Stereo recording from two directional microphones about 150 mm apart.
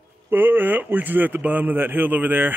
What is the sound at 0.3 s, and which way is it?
Speech, 15° right (ahead or behind).